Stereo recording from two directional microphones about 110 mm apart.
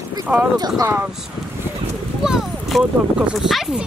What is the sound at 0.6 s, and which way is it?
Speech, 40° right (ahead or behind).